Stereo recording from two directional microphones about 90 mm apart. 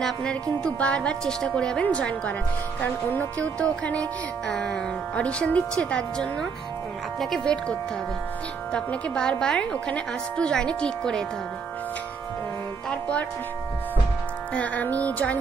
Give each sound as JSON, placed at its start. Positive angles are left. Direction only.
{"t": 0.0, "sound": "a woman's voice", "side_deg": 10}
{"t": 8.7, "sound": "a woman's voice", "side_deg": 10}
{"t": 14.5, "sound": "a woman's voice", "side_deg": 15}